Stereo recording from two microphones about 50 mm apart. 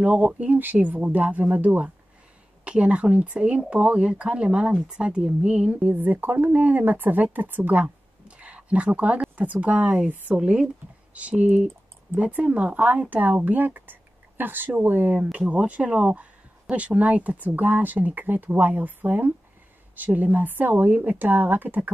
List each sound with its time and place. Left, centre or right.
0.0 s speech: right
0.5 s speech: right
2.6 s speech: right
7.8 s a sound: right
9.4 s speech: right